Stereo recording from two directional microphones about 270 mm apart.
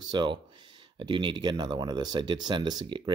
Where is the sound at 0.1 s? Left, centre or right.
Centre.